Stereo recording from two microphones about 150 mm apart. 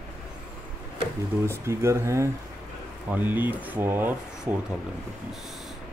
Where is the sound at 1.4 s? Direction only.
15° right (ahead or behind).